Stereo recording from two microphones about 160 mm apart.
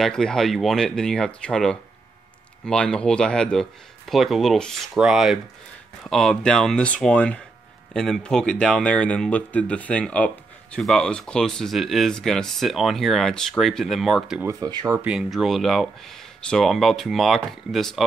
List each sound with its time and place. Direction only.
0.0 s speech: 5° left (ahead or behind)
14.4 s speech: 20° right (ahead or behind)
15.0 s speech: 5° right (ahead or behind)